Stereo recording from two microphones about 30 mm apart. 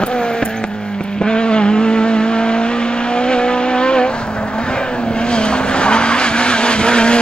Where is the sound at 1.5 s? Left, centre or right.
Left.